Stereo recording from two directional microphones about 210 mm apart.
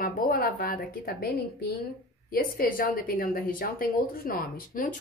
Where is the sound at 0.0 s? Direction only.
45° left (ahead or behind).